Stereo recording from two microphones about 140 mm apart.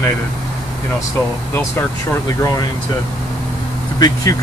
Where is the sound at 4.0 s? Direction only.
25° left (ahead or behind).